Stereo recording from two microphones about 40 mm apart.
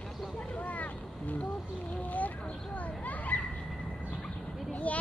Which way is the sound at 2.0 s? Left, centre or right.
Left.